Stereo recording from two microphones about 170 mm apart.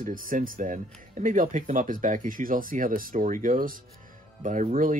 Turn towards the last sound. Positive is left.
turn(degrees=-55)  # may be behind; listen again after turning